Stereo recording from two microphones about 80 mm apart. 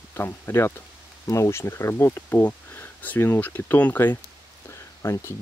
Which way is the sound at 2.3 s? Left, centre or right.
Left.